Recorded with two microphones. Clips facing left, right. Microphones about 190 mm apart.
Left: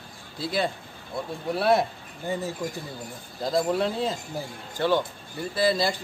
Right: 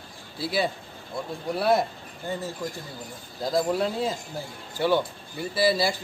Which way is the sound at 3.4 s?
Centre (ahead or behind).